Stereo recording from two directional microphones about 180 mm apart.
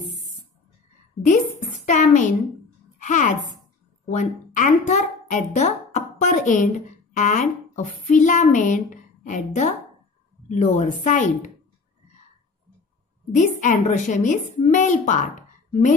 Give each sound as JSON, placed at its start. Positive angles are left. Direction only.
{"t": 1.9, "sound": "a woman's voice", "side_deg": 45}
{"t": 13.3, "sound": "a woman's voice", "side_deg": 45}